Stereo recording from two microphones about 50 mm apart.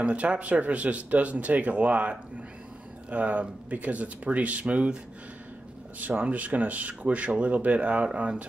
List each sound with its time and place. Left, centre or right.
0.0 s speech: right
5.9 s speech: right